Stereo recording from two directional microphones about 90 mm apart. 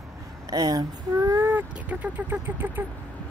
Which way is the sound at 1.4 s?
20° right (ahead or behind).